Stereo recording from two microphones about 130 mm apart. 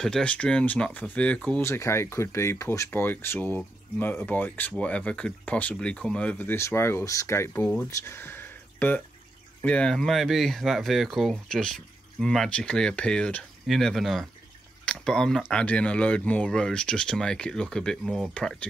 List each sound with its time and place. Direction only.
0.0 s speech: 5° left (ahead or behind)
1.6 s speech: 20° left (ahead or behind)
8.0 s a sound: 20° left (ahead or behind)
9.6 s speech: 10° left (ahead or behind)